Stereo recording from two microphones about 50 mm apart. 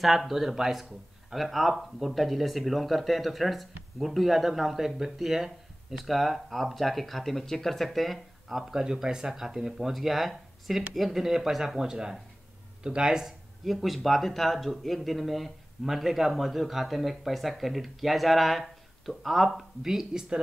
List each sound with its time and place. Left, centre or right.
0.0 s speech: centre